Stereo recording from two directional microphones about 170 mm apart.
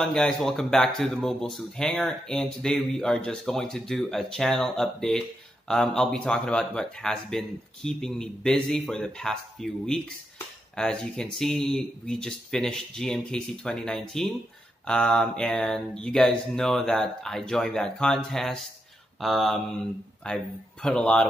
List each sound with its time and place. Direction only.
0.0 s speech: 5° left (ahead or behind)